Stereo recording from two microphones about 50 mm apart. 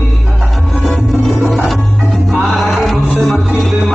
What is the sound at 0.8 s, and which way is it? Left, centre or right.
Music, centre.